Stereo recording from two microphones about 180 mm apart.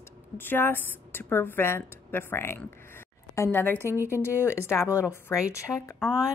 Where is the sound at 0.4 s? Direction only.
10° left (ahead or behind).